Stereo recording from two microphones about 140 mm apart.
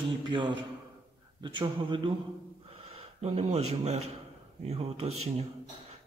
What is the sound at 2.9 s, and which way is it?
Speech, 50° right (ahead or behind).